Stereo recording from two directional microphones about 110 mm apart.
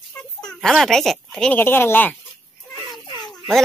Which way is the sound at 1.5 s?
20° left (ahead or behind).